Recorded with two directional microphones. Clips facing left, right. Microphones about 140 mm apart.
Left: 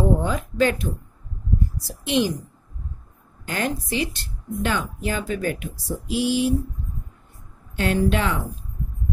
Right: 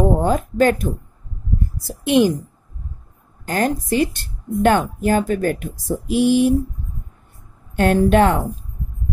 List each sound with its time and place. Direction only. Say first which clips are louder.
0.0 s speech: right 5 dB; 45° right (ahead or behind)
3.4 s speech: right 6 dB; 45° right (ahead or behind)
7.7 s speech: right 7 dB; 50° right (ahead or behind)